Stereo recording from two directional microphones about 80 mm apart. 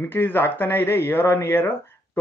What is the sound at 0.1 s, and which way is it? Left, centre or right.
Speech, left.